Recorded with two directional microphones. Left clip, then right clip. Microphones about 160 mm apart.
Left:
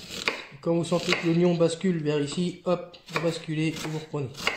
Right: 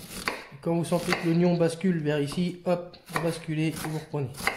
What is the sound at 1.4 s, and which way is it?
Speech, 15° left (ahead or behind).